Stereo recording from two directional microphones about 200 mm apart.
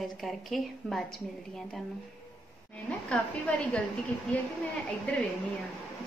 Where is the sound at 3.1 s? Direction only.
5° left (ahead or behind).